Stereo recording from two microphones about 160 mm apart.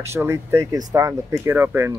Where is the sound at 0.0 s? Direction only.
15° right (ahead or behind).